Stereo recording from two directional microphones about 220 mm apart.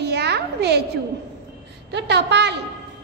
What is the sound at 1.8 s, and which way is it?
Child singing, 50° right (ahead or behind).